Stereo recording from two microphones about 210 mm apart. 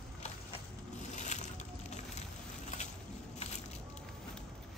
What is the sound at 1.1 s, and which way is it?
Boat, 35° left (ahead or behind).